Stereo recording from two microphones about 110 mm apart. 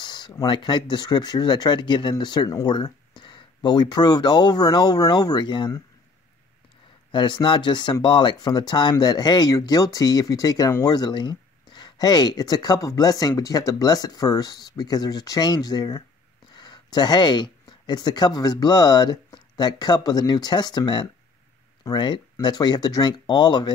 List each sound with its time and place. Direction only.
0.0 s speech: 45° left (ahead or behind)
7.1 s speech: 45° left (ahead or behind)